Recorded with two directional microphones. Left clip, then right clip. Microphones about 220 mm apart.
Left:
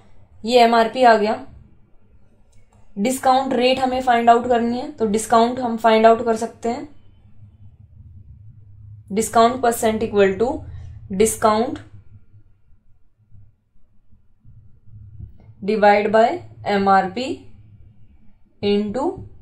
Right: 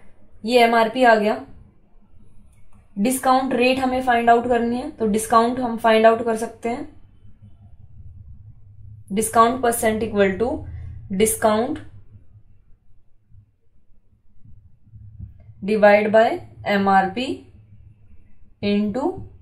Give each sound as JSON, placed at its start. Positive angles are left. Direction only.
{"t": 0.5, "sound": "a woman's voice", "side_deg": 30}
{"t": 3.0, "sound": "a woman's voice", "side_deg": 30}
{"t": 9.1, "sound": "a woman's voice", "side_deg": 30}
{"t": 15.6, "sound": "a woman's voice", "side_deg": 30}
{"t": 18.6, "sound": "a woman's voice", "side_deg": 25}